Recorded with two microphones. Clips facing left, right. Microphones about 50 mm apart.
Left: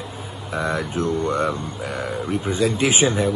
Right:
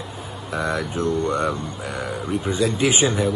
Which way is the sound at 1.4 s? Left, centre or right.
Centre.